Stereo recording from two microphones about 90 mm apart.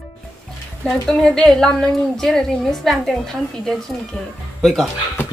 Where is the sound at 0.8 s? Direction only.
5° left (ahead or behind).